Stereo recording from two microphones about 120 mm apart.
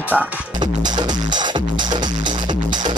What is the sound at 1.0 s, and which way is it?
Music, 40° right (ahead or behind).